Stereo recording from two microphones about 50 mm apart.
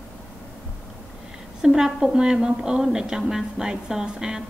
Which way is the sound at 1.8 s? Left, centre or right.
Centre.